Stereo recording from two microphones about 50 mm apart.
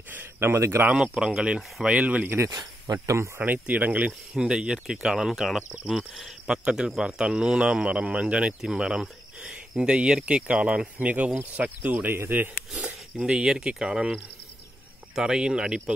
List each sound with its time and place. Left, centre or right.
0.1 s speech: right
0.9 s speech: centre
2.2 s speech: right
2.9 s speech: right
3.3 s speech: right
4.4 s speech: centre
6.4 s speech: centre; by 12.8 s right
12.8 s speech: centre
15.1 s speech: centre